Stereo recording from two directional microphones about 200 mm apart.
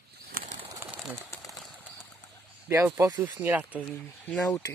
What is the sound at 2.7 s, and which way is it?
Speech, 15° right (ahead or behind).